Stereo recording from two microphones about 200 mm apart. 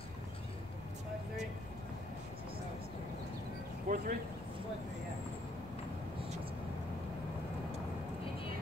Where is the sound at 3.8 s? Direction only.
40° right (ahead or behind).